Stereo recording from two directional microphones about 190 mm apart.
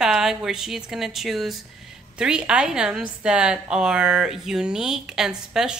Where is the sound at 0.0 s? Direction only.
Centre (ahead or behind).